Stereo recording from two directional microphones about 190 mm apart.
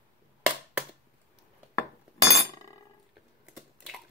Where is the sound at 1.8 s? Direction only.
15° left (ahead or behind).